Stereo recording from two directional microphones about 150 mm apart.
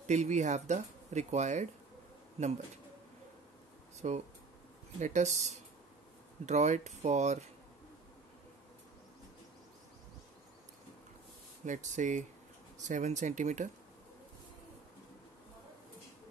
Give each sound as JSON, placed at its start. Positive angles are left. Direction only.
{"t": 0.0, "sound": "speech", "side_deg": -55}
{"t": 4.0, "sound": "speech", "side_deg": -50}
{"t": 11.6, "sound": "speech", "side_deg": -55}